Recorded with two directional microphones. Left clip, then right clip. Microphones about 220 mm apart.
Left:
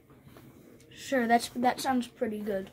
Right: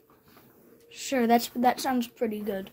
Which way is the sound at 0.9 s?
25° right (ahead or behind).